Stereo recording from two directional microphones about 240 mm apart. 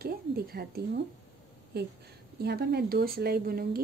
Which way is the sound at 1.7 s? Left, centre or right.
Right.